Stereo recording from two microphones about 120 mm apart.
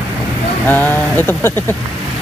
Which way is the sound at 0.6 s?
15° left (ahead or behind).